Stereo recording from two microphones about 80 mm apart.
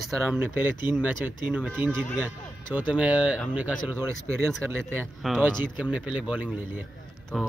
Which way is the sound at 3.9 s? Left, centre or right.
Right.